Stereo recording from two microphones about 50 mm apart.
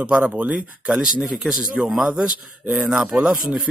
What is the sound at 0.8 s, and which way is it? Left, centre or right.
A man's voice, centre.